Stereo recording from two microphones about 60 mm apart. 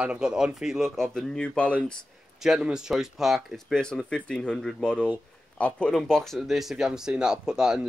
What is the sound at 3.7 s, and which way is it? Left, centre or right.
Speech, centre.